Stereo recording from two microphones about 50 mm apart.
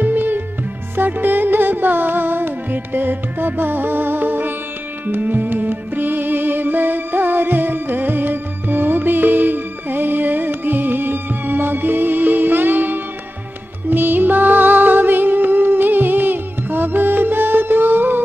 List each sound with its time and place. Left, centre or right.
0.0 s music: right